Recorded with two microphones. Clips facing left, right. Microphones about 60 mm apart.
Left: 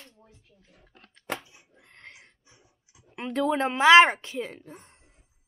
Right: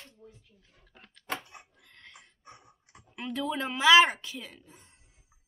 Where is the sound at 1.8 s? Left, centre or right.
Left.